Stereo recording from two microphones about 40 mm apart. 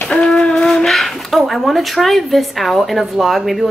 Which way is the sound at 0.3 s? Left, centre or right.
Centre.